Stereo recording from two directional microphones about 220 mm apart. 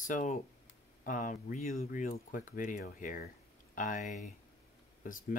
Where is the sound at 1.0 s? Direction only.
35° left (ahead or behind).